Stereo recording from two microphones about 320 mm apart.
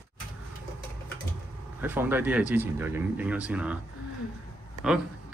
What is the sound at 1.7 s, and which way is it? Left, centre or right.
Speech, centre.